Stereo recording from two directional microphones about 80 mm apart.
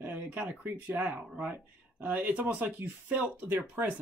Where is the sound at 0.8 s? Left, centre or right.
Centre.